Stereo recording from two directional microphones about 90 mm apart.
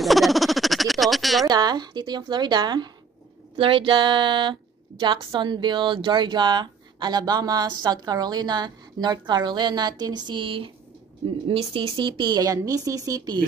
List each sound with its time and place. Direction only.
0.0 s a sound: centre (ahead or behind)
1.5 s a woman's voice: 50° right (ahead or behind)
3.5 s speech: 85° right
11.4 s speech: 85° right
12.0 s speech: 60° right (ahead or behind)
12.4 s a woman's voice: 40° right (ahead or behind)